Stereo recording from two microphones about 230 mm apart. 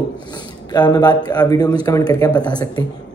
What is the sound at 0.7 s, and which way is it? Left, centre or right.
A man's voice, centre.